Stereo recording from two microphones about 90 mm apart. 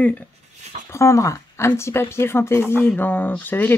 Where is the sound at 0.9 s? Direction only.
35° left (ahead or behind).